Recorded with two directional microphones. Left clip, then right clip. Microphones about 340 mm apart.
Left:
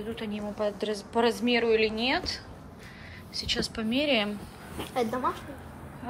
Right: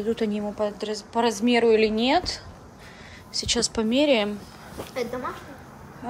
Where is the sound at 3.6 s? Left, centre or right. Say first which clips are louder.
Right 8 dB; centre.